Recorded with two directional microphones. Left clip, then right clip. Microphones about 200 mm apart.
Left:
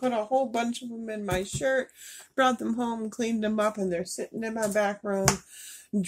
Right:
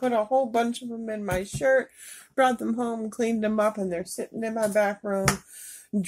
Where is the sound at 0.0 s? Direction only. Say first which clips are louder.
Right 3 dB; centre (ahead or behind).